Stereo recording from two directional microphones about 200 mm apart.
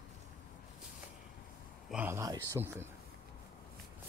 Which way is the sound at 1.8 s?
10° right (ahead or behind).